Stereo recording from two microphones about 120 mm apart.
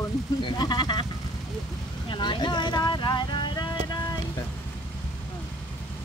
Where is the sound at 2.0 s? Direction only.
40° left (ahead or behind).